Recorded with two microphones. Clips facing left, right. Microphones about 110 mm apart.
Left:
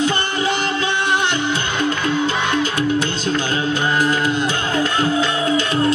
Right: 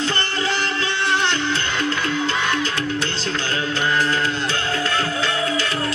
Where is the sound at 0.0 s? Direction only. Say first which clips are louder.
Left 4 dB; 15° left (ahead or behind).